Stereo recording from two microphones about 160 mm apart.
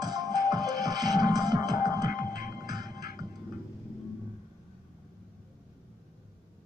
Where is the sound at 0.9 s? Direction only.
Centre (ahead or behind).